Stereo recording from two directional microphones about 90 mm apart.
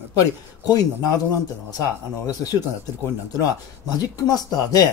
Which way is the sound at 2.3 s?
45° left (ahead or behind).